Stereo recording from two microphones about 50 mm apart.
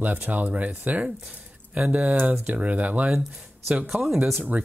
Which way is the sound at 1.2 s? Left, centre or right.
Right.